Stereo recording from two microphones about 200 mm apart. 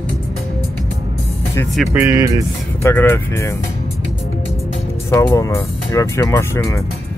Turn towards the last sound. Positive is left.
turn(degrees=15)  # may be behind; listen again after turning